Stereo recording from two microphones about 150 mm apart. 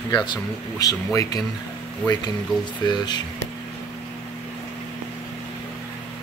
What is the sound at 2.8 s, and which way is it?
Speech, 30° left (ahead or behind).